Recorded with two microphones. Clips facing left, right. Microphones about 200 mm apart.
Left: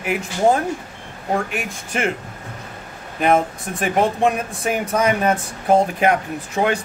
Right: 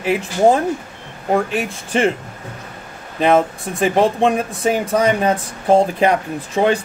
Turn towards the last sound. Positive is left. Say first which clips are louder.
# right 4 dB
turn(degrees=-30)  # may be behind; listen again after turning